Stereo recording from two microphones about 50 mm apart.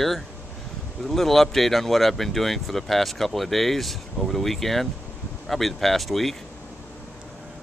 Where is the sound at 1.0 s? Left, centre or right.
Centre.